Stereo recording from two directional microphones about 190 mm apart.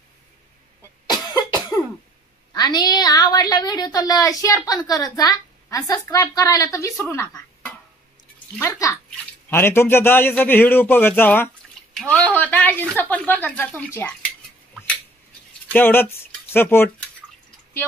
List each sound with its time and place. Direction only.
1.1 s cough: 20° left (ahead or behind)
2.5 s a woman's voice: 20° left (ahead or behind)
7.0 s a sound: 10° left (ahead or behind)
8.5 s a man's voice: 15° left (ahead or behind)
15.7 s speech: 10° left (ahead or behind)